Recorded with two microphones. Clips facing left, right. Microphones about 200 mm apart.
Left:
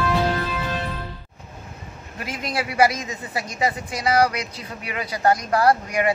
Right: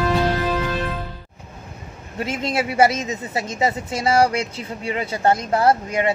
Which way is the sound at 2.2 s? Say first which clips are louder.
Right 5 dB; 25° right (ahead or behind).